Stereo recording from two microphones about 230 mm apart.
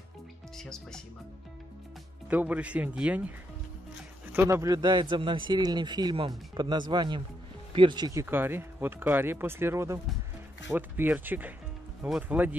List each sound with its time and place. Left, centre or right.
0.6 s speech: centre
2.2 s speech: centre